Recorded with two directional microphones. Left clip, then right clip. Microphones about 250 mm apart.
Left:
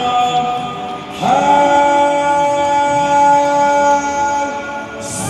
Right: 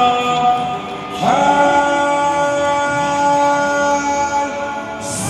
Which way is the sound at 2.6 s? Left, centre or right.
Centre.